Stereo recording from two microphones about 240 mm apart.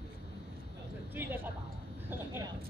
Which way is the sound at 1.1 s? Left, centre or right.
Centre.